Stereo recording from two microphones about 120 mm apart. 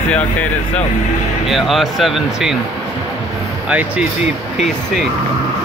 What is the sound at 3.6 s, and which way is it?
Speech, 10° right (ahead or behind).